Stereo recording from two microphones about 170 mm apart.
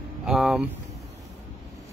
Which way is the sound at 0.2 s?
5° right (ahead or behind).